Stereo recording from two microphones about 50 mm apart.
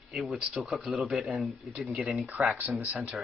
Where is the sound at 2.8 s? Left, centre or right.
Right.